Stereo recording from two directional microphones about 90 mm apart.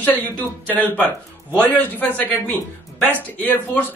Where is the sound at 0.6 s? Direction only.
20° left (ahead or behind).